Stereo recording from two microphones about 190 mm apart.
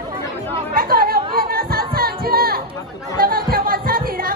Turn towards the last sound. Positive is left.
turn(degrees=-50)  # may be behind; listen again after turning